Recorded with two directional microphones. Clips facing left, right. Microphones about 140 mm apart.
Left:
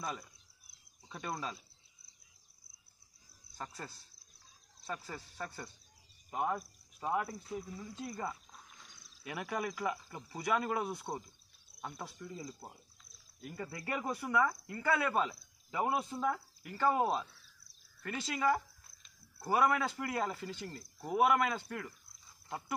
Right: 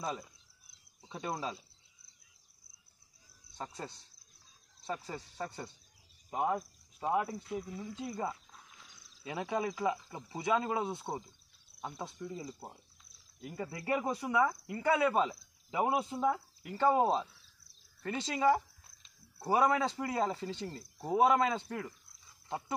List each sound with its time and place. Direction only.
0.0 s speech: 25° right (ahead or behind)
3.5 s speech: 25° right (ahead or behind)